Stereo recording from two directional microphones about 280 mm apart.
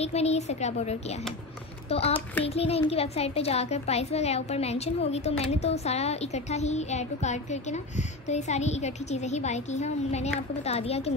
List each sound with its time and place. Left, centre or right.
0.0 s a child's voice: left